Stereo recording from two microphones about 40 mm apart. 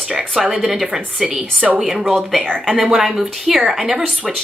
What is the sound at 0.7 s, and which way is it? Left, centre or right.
Speech, centre.